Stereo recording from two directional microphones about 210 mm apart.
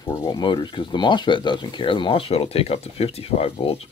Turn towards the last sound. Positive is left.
turn(degrees=25)  # may be behind; listen again after turning